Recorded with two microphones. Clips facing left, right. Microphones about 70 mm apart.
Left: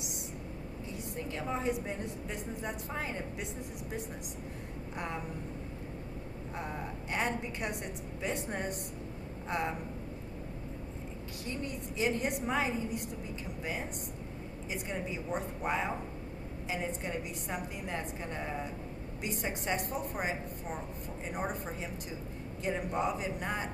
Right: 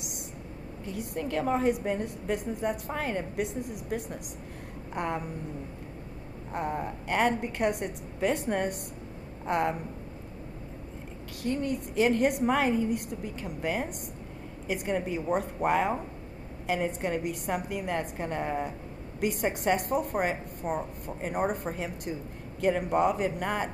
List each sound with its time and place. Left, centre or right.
0.8 s a woman's voice: right
4.9 s a woman's voice: right
6.5 s a woman's voice: right
11.4 s a woman's voice: right